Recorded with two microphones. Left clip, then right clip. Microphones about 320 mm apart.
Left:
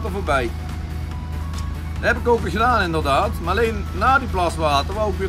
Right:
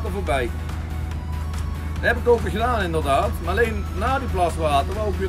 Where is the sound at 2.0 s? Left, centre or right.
Centre.